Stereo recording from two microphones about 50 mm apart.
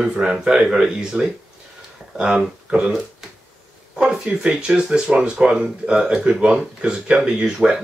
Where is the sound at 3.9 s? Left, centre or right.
Centre.